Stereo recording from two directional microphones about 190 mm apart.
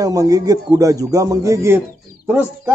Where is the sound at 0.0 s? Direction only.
20° right (ahead or behind).